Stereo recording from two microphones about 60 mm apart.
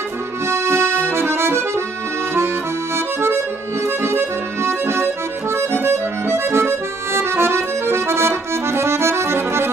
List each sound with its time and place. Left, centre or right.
0.5 s accordion: right
3.8 s accordion: right